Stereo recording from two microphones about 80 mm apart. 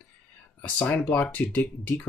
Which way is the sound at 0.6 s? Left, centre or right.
Centre.